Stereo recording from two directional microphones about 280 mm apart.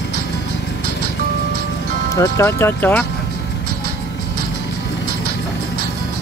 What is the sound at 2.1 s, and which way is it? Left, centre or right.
Speech, centre.